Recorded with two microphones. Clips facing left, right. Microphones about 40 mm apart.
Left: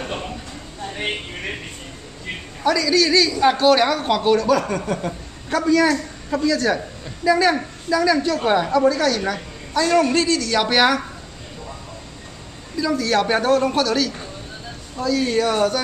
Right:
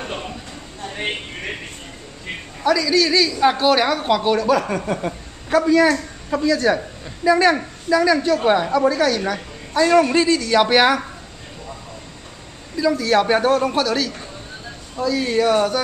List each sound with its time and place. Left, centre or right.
0.0 s a sound: centre
2.6 s a woman's voice: centre
7.2 s speech: right
7.5 s a woman's voice: centre
12.7 s a man's voice: centre